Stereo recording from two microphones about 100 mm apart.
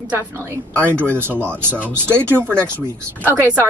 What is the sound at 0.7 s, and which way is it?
Speech, 25° right (ahead or behind).